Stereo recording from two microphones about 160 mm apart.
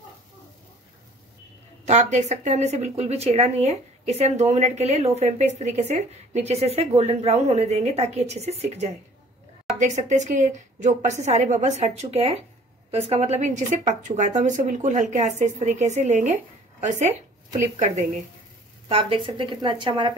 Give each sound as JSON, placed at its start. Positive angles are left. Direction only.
{"t": 1.9, "sound": "speech", "side_deg": -45}
{"t": 17.6, "sound": "speech", "side_deg": -45}
{"t": 18.9, "sound": "a woman's voice", "side_deg": -35}